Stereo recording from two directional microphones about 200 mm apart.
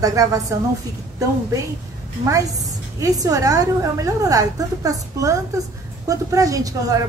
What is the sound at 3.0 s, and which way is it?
A woman's voice, 15° right (ahead or behind).